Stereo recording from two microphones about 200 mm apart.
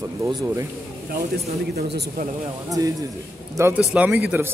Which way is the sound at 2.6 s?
20° right (ahead or behind).